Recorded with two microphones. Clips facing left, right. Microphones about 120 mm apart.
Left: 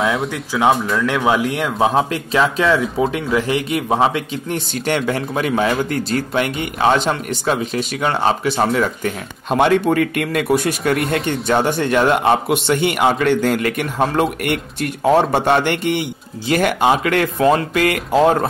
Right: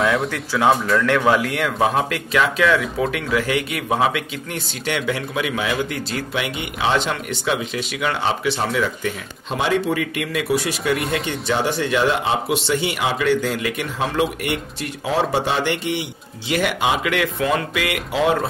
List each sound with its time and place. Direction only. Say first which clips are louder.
0.0 s speech: even; centre (ahead or behind)
0.3 s speech: left 1 dB; 15° left (ahead or behind)
4.8 s a man's voice: left 3 dB; 45° left (ahead or behind)